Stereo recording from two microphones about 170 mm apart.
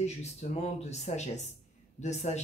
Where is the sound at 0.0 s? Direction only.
40° left (ahead or behind).